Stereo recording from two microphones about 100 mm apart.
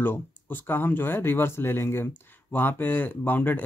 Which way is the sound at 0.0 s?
20° left (ahead or behind).